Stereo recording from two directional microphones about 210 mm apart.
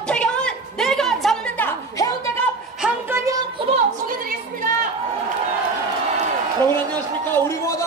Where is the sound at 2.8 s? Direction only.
10° right (ahead or behind).